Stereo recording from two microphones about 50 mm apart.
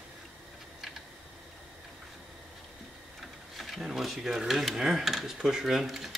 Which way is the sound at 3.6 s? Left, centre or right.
Centre.